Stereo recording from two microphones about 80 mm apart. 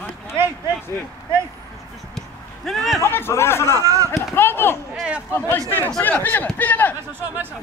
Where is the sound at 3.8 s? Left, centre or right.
Right.